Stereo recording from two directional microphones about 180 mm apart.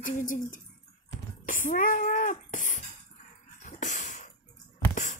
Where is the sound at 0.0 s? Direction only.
45° left (ahead or behind).